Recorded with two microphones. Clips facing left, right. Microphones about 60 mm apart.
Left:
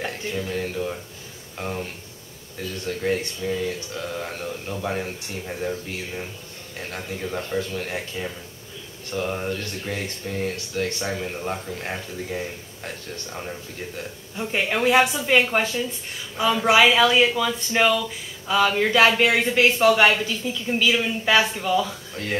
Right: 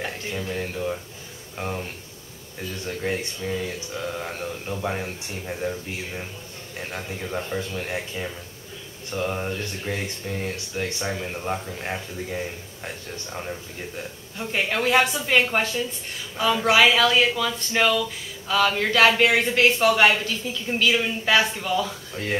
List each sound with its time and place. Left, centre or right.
0.0 s speech: centre
6.8 s speech: centre
10.5 s speech: centre
11.1 s speech: centre